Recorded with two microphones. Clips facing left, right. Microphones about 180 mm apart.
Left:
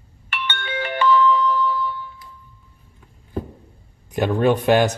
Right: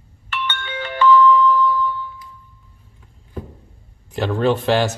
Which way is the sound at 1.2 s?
35° left (ahead or behind).